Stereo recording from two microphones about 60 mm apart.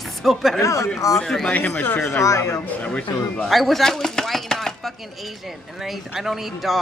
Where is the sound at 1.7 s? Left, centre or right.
Left.